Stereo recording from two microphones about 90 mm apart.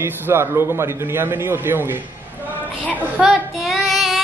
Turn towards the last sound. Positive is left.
turn(degrees=0)  # may be behind; listen again after turning